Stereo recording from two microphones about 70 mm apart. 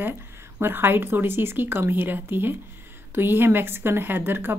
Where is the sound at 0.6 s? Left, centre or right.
Right.